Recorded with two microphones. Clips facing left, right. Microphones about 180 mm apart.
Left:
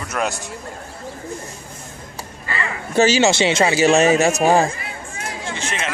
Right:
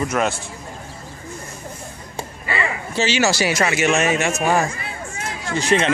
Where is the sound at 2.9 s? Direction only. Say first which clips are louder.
Left 6 dB; 45° left (ahead or behind).